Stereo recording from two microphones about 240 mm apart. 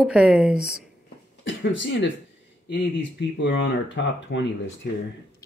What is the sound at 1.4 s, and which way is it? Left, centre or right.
Speech, left.